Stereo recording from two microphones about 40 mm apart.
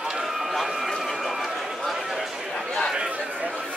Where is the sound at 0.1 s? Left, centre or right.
Centre.